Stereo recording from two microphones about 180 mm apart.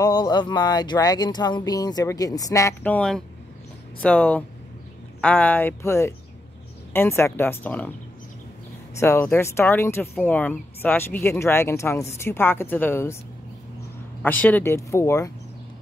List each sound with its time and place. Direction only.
0.0 s speech: 20° left (ahead or behind)
9.0 s speech: 15° left (ahead or behind)
14.2 s speech: 10° left (ahead or behind)